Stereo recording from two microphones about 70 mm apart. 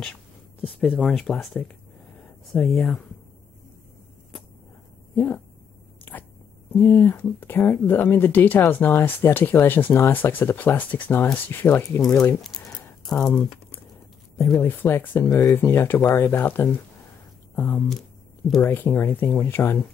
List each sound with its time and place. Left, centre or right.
0.7 s speech: centre
5.1 s speech: left
6.7 s speech: left
12.5 s a sound: centre
13.0 s speech: centre
14.6 s speech: left
15.2 s speech: left
15.5 s speech: left